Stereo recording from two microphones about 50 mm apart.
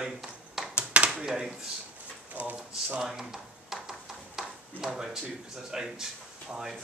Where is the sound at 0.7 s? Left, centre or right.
Right.